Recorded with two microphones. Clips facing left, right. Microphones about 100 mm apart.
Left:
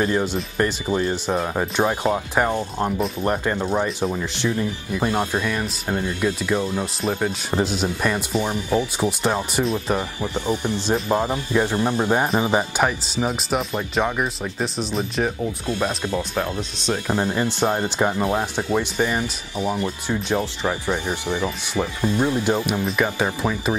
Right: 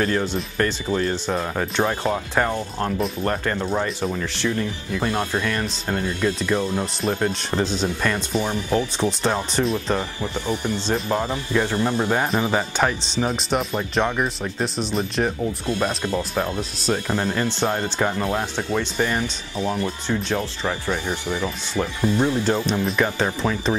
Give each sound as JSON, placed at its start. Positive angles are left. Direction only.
{"t": 0.0, "sound": "speech", "side_deg": 15}
{"t": 16.2, "sound": "speech", "side_deg": 0}
{"t": 17.1, "sound": "speech", "side_deg": 15}